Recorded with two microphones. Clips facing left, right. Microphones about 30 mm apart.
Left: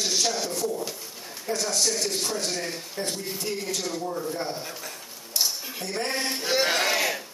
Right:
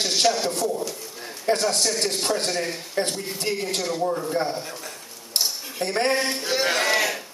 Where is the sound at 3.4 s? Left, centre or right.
Right.